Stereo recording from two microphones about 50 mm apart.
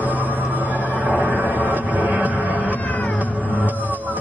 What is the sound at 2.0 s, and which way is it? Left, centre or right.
Music, right.